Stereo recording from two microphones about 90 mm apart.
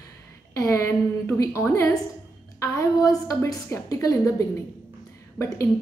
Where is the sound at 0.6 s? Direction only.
35° left (ahead or behind).